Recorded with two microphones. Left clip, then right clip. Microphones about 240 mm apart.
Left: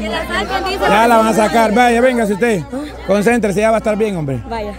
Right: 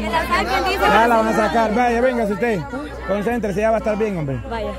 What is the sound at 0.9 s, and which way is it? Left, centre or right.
A man's voice, left.